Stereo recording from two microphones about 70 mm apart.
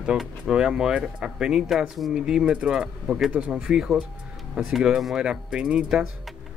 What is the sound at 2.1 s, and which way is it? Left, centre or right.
Speech, centre.